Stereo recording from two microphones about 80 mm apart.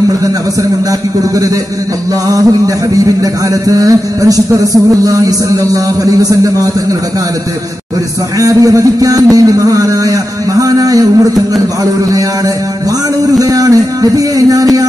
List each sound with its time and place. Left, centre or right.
2.2 s a man's voice: right
8.4 s a man's voice: right
13.4 s speech: right